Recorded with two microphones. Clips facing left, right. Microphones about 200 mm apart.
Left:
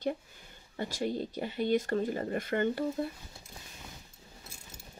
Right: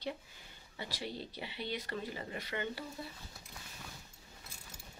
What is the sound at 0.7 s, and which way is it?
Speech, 45° left (ahead or behind).